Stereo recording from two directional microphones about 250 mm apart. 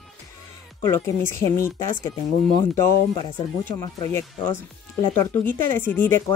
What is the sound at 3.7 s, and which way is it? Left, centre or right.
Speech, centre.